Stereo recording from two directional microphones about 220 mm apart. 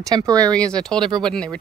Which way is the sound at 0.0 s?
15° right (ahead or behind).